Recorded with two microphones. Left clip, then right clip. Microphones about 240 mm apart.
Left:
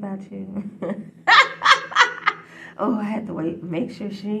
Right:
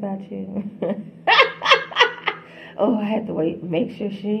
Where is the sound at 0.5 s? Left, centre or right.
Left.